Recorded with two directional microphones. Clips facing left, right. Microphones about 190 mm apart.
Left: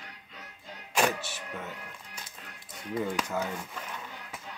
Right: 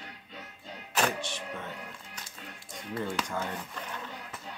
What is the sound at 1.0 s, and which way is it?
Music, 5° left (ahead or behind).